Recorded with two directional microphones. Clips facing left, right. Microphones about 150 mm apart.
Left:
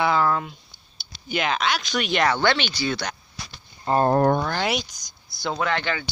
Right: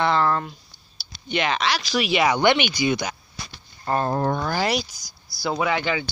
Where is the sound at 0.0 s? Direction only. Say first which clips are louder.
Even; 5° left (ahead or behind); by 3.1 s 15° right (ahead or behind).